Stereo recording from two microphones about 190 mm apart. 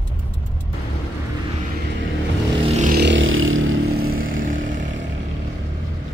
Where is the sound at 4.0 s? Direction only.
50° right (ahead or behind).